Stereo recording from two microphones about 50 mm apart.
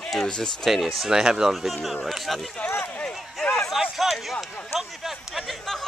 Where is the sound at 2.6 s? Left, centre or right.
Left.